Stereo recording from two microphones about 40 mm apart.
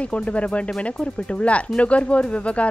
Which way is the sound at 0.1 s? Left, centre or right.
Left.